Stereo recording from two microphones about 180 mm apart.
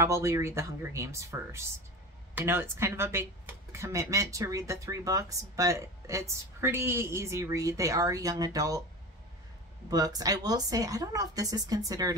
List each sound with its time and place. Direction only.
0.0 s speech: 15° right (ahead or behind)
9.8 s speech: 20° right (ahead or behind)